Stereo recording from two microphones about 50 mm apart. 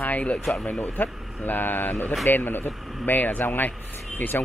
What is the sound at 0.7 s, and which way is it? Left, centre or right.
Speech, left.